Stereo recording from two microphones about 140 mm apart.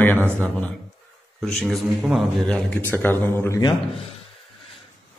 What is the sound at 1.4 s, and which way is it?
Speech, 5° left (ahead or behind).